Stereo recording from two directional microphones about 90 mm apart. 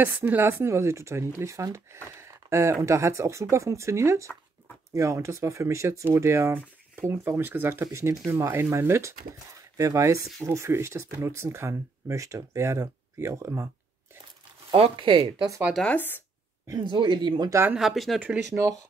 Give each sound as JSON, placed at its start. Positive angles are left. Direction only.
{"t": 0.0, "sound": "speech", "side_deg": -20}
{"t": 14.7, "sound": "speech", "side_deg": -75}
{"t": 15.8, "sound": "speech", "side_deg": 20}
{"t": 16.8, "sound": "speech", "side_deg": -60}
{"t": 17.7, "sound": "speech", "side_deg": 0}
{"t": 18.5, "sound": "speech", "side_deg": -40}